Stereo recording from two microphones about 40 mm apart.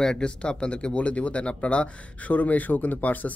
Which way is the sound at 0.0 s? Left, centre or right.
Left.